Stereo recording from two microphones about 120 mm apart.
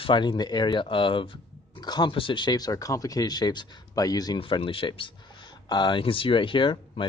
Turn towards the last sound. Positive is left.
turn(degrees=45)  # may be behind; listen again after turning